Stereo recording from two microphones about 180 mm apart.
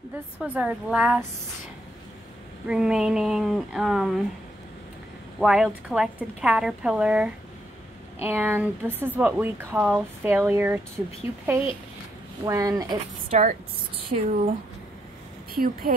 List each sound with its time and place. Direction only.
0.4 s speech: 5° right (ahead or behind)
2.7 s a woman's voice: 5° right (ahead or behind)
5.4 s a woman's voice: 5° right (ahead or behind)
12.4 s speech: 20° right (ahead or behind)
13.3 s speech: 50° right (ahead or behind)
13.9 s speech: 35° right (ahead or behind)
15.5 s speech: 55° right (ahead or behind)